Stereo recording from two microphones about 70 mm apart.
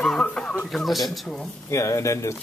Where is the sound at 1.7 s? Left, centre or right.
Left.